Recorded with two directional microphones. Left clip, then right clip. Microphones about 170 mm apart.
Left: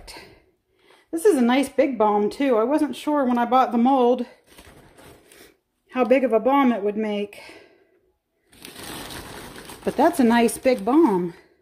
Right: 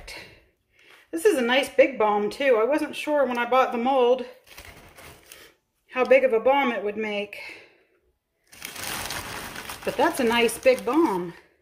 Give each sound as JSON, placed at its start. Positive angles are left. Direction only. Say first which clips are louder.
{"t": 1.2, "sound": "a woman's voice", "louder": "left 2 dB", "side_deg": 50}
{"t": 5.4, "sound": "speech", "louder": "even", "side_deg": 60}
{"t": 9.9, "sound": "a woman's voice", "louder": "left 3 dB", "side_deg": 50}